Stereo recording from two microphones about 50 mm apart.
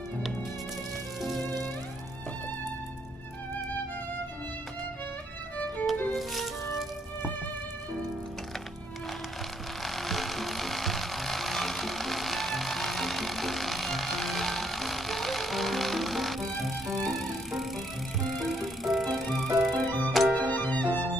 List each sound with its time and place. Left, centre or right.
1.2 s music: centre
5.9 s music: centre
9.8 s vehicle: centre
18.2 s music: centre
20.3 s music: left